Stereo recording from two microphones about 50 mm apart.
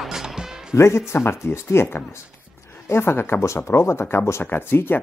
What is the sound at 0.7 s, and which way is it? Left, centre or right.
Speech, left.